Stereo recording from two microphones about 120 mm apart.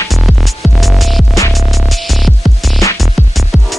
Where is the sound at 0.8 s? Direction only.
Centre (ahead or behind).